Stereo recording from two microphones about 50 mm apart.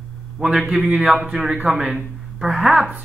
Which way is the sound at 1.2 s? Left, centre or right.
Centre.